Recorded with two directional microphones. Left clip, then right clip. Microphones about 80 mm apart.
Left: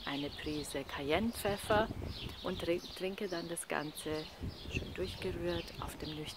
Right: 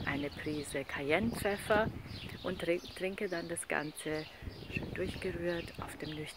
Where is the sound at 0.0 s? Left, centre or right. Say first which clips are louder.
Right 2 dB; left.